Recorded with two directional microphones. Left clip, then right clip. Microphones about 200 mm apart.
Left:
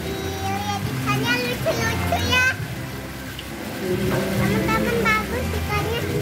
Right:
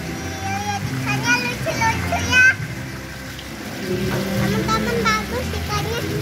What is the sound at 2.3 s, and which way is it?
Children playing, 30° left (ahead or behind).